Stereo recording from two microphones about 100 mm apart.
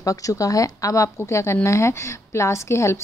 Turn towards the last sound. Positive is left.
turn(degrees=30)  # may be behind; listen again after turning